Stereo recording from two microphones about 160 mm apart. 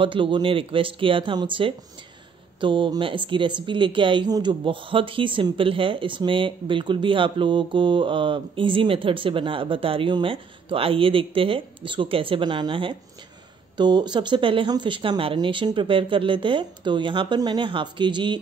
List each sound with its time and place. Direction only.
0.0 s speech: 30° right (ahead or behind)